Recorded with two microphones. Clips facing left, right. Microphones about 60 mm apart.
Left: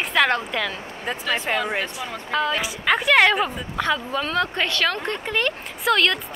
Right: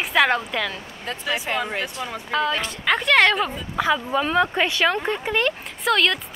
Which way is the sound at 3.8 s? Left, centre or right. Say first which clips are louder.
Right 3 dB; centre.